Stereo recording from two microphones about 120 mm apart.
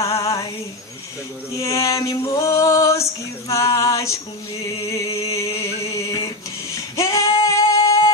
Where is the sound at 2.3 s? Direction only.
25° left (ahead or behind).